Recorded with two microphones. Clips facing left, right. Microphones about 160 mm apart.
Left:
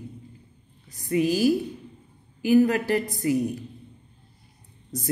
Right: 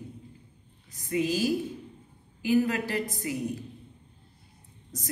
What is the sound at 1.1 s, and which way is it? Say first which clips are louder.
Speech: left 5 dB; 20° right (ahead or behind).